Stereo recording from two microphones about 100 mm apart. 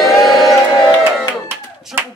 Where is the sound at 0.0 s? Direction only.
Centre (ahead or behind).